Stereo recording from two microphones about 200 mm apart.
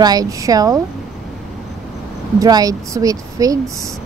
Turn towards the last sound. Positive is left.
turn(degrees=-15)  # may be behind; listen again after turning